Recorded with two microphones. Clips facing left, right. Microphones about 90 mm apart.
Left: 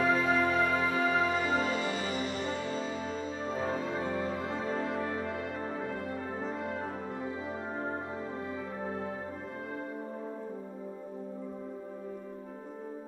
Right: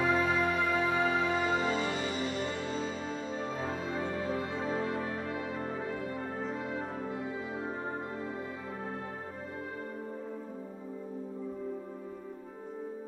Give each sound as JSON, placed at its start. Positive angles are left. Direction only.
{"t": 0.0, "sound": "music", "side_deg": -15}
{"t": 1.2, "sound": "music", "side_deg": 0}
{"t": 3.6, "sound": "music", "side_deg": 0}